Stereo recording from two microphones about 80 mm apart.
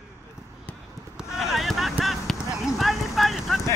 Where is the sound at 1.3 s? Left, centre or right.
Centre.